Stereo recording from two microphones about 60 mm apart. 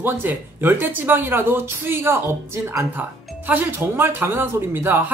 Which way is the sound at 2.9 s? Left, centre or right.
Right.